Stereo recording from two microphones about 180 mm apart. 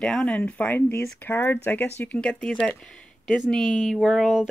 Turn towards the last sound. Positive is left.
turn(degrees=0)  # may be behind; listen again after turning